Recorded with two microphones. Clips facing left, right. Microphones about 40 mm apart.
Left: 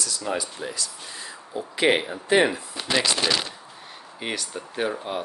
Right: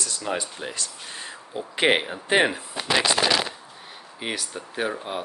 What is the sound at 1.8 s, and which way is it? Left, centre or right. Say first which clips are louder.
Speech: even; right.